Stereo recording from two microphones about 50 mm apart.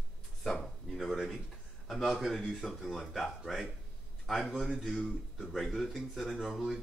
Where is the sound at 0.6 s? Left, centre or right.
Centre.